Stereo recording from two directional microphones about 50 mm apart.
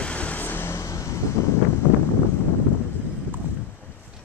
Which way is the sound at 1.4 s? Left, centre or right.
Left.